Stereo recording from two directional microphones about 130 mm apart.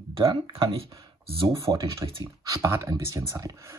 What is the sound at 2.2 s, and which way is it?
Speech, 25° right (ahead or behind).